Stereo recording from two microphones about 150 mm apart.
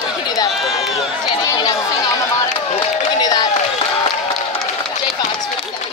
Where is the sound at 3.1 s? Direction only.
25° left (ahead or behind).